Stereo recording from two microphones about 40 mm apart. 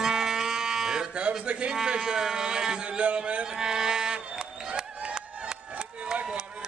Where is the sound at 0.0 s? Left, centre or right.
Centre.